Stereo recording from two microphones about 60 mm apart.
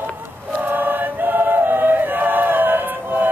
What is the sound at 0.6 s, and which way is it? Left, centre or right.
Choir, right.